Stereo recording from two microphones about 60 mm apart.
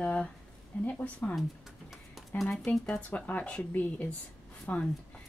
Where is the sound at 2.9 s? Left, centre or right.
Left.